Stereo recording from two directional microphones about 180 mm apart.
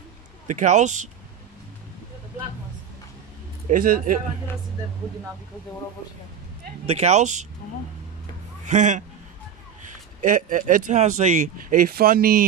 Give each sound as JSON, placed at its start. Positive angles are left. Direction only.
{"t": 0.5, "sound": "speech", "side_deg": -40}
{"t": 3.6, "sound": "speech", "side_deg": -50}
{"t": 6.9, "sound": "speech", "side_deg": -35}
{"t": 8.6, "sound": "a man's voice", "side_deg": -40}
{"t": 10.2, "sound": "speech", "side_deg": -45}